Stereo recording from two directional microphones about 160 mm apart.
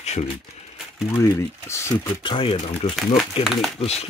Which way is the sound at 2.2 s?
35° left (ahead or behind).